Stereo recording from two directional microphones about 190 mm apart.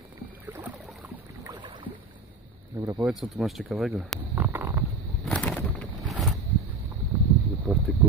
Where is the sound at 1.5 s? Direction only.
25° right (ahead or behind).